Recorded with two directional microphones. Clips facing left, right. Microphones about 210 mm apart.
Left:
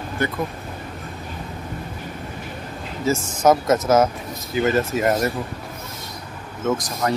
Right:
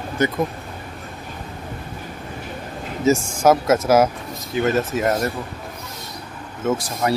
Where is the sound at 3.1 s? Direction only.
20° right (ahead or behind).